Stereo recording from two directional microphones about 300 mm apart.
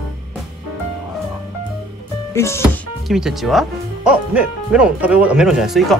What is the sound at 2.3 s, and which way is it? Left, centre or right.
Speech, centre.